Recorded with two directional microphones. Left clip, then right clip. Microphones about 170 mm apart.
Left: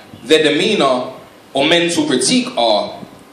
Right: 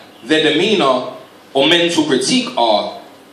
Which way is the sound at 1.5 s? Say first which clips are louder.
Right 1 dB; 50° left (ahead or behind).